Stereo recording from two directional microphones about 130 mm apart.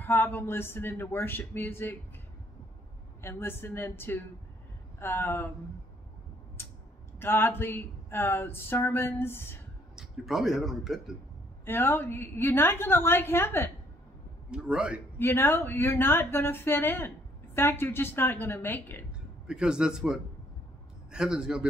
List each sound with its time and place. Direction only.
0.0 s speech: 15° left (ahead or behind)
3.2 s speech: 20° left (ahead or behind)
6.6 s a sound: 15° left (ahead or behind)
7.2 s speech: 15° left (ahead or behind)
9.9 s speech: centre (ahead or behind)
11.6 s speech: 15° left (ahead or behind)
14.5 s a man's voice: 5° right (ahead or behind)
15.1 s speech: 15° left (ahead or behind)
19.4 s speech: 5° right (ahead or behind)